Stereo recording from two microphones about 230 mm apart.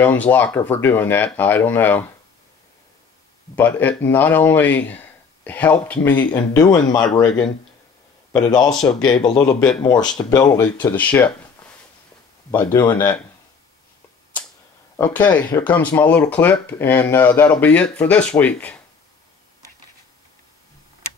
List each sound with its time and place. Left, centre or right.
0.0 s speech: centre
3.5 s speech: centre
7.1 s a man's voice: centre
8.3 s a man's voice: centre
9.6 s a man's voice: centre
9.8 s speech: centre
15.0 s speech: centre